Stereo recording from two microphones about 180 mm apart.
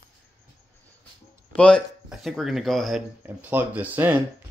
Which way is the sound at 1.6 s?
5° left (ahead or behind).